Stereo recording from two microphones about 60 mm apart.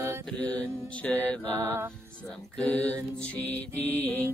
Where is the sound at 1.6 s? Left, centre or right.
Right.